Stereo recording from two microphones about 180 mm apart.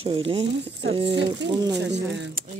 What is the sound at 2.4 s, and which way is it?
Speech, 50° right (ahead or behind).